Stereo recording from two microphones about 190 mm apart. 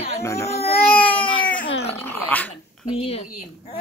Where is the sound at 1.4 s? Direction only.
45° left (ahead or behind).